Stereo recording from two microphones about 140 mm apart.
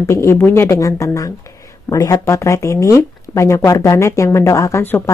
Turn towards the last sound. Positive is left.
turn(degrees=15)  # may be behind; listen again after turning